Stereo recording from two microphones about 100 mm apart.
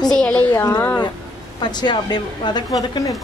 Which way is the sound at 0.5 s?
35° left (ahead or behind).